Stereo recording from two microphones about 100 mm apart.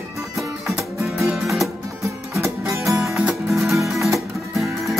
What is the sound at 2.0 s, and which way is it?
Music, 30° right (ahead or behind).